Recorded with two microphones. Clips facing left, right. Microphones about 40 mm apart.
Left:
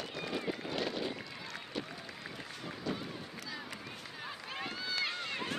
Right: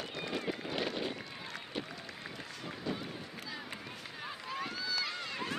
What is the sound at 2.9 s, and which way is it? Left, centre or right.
Run, centre.